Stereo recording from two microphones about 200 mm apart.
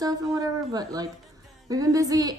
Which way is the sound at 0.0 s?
20° right (ahead or behind).